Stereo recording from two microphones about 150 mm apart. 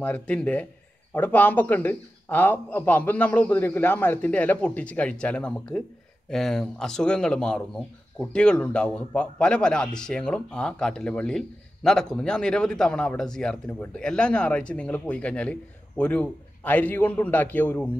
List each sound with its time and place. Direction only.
0.0 s a man's voice: 10° left (ahead or behind)